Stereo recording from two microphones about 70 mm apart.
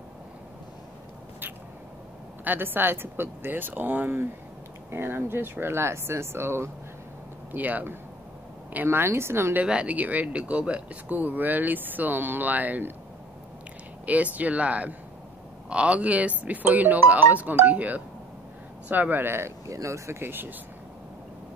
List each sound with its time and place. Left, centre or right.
2.4 s speech: right
7.5 s speech: right
9.6 s speech: centre
14.0 s speech: right
19.7 s speech: right